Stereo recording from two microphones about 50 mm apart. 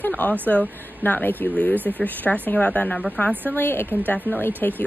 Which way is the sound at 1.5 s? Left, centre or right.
Left.